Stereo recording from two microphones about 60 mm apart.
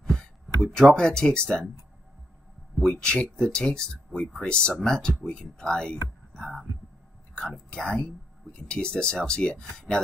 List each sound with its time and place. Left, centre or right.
0.0 s a sound: centre
0.9 s speech: centre
2.8 s speech: centre